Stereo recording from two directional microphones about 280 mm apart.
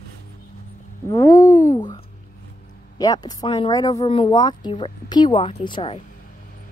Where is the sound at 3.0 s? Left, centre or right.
Centre.